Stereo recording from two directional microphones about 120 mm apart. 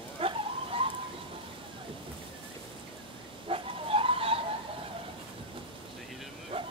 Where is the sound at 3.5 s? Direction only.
50° right (ahead or behind).